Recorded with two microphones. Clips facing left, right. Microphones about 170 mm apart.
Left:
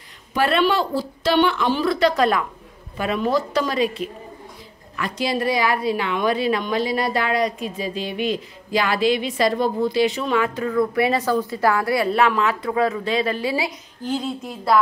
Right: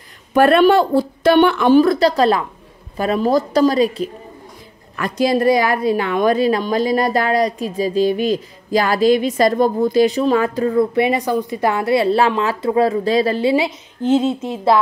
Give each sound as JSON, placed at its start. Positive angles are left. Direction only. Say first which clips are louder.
{"t": 0.3, "sound": "a woman's voice", "louder": "right 8 dB", "side_deg": -50}